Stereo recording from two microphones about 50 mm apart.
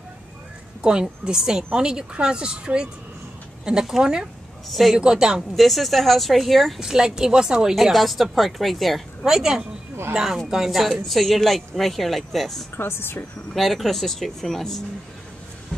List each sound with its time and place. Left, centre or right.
0.8 s a woman's voice: centre
4.6 s speech: centre
4.9 s a woman's voice: centre
5.6 s speech: centre
6.8 s a woman's voice: centre
7.7 s speech: centre
9.3 s a woman's voice: centre
12.7 s speech: left
13.5 s speech: centre